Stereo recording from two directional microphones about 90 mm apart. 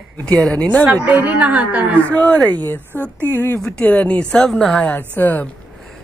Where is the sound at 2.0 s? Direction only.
15° left (ahead or behind).